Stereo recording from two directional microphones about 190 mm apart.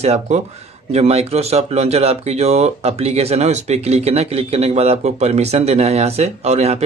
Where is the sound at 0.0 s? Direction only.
35° right (ahead or behind).